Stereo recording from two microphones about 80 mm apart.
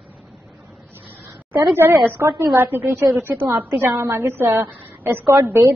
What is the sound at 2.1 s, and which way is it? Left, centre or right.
A woman's voice, right.